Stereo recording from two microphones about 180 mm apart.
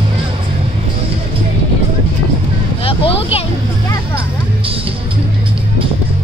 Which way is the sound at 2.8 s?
30° left (ahead or behind).